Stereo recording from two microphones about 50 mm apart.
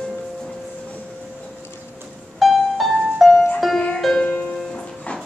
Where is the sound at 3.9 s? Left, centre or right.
Centre.